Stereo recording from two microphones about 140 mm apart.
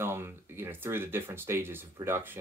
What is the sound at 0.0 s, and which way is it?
Speech, 15° right (ahead or behind).